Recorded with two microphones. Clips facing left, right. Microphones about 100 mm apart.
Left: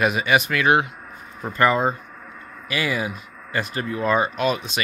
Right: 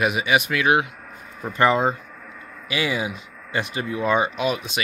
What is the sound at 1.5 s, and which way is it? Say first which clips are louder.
Speech: even; 20° right (ahead or behind).